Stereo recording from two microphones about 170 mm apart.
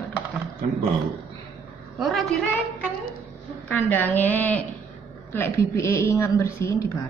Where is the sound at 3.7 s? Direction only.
10° left (ahead or behind).